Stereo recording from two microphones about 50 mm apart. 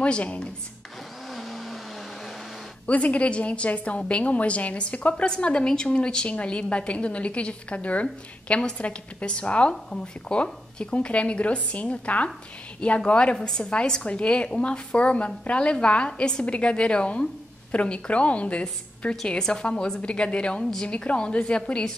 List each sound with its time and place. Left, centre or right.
0.0 s a woman's voice: left
1.3 s vehicle: centre
2.9 s a woman's voice: left